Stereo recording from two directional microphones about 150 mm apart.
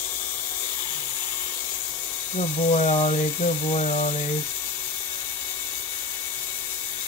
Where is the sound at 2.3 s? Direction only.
45° left (ahead or behind).